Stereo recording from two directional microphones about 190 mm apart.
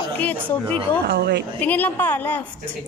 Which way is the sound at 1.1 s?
60° right (ahead or behind).